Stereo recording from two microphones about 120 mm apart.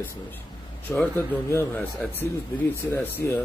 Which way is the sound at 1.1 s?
20° left (ahead or behind).